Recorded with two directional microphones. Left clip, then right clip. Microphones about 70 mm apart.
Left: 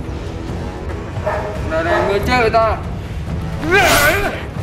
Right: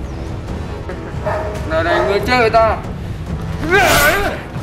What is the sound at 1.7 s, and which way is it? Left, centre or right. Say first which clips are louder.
Speech: right 1 dB; right.